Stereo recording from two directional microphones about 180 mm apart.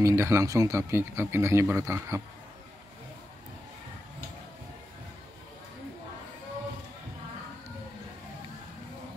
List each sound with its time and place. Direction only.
0.0 s speech: 15° right (ahead or behind)